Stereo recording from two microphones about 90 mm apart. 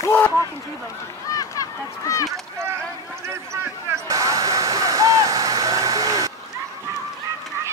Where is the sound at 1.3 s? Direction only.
40° left (ahead or behind).